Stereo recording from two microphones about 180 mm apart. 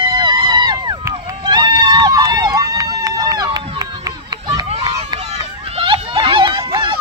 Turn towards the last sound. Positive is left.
turn(degrees=-25)  # may be behind; listen again after turning